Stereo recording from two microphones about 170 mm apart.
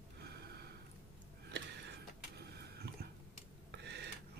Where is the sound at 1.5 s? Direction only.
85° right.